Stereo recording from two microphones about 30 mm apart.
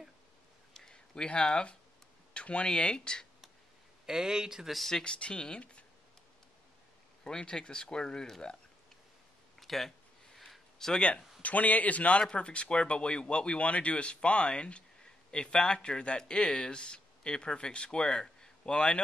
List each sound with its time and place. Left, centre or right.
0.9 s speech: left
2.3 s speech: left
2.7 s speech: left
4.0 s speech: right
5.0 s speech: left
7.2 s speech: left
9.6 s a sound: centre
10.8 s speech: centre
11.4 s a man's voice: left
12.2 s speech: left